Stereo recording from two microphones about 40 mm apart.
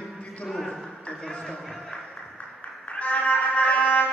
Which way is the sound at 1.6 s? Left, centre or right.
Centre.